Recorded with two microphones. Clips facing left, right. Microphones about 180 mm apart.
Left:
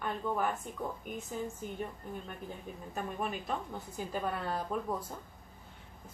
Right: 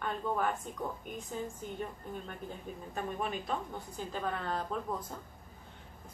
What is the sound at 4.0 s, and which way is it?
Speech, 10° left (ahead or behind).